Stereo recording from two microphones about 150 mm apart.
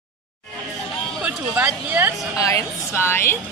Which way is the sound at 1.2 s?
10° right (ahead or behind).